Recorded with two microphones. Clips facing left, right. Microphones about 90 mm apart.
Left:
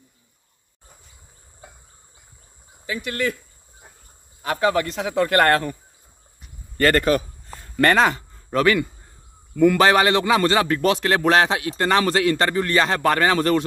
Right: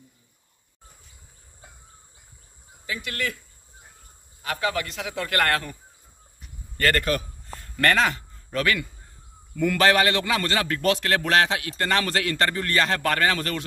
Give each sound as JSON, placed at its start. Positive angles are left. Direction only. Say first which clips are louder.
{"t": 2.9, "sound": "a man's voice", "louder": "left 5 dB", "side_deg": 25}
{"t": 4.4, "sound": "speech", "louder": "left 6 dB", "side_deg": 30}
{"t": 6.8, "sound": "a man's voice", "louder": "left 5 dB", "side_deg": 25}
{"t": 7.5, "sound": "a man's voice", "louder": "left 4 dB", "side_deg": 15}